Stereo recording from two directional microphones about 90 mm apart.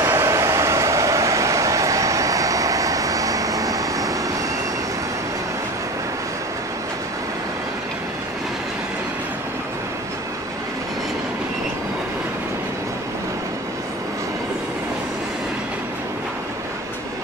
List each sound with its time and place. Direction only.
0.0 s vehicle: 30° right (ahead or behind)